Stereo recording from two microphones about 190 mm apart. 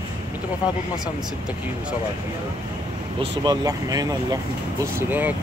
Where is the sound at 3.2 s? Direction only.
20° right (ahead or behind).